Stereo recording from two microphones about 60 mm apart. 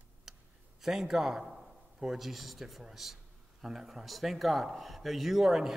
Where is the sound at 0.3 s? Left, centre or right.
Centre.